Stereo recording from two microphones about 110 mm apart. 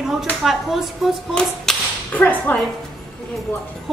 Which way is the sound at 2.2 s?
15° left (ahead or behind).